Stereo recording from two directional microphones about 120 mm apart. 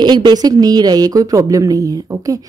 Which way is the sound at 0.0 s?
35° right (ahead or behind).